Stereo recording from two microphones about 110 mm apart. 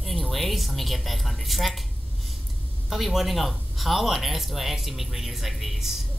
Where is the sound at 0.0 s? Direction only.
Centre (ahead or behind).